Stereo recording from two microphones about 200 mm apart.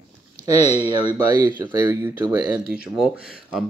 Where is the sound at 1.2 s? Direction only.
20° right (ahead or behind).